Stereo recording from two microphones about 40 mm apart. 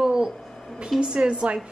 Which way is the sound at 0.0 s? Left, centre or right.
Centre.